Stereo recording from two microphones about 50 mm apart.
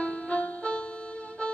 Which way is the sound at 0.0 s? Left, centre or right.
Left.